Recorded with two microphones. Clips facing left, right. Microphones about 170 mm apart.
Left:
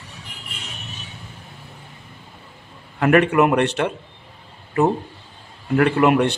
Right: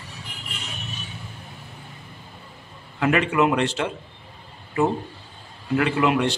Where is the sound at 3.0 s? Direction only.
55° left (ahead or behind).